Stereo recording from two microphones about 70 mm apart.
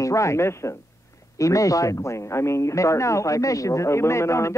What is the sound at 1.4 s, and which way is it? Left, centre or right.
Speech, left.